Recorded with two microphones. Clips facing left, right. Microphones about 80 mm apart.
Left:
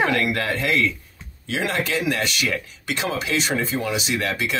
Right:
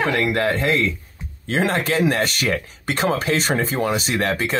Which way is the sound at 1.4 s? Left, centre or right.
Right.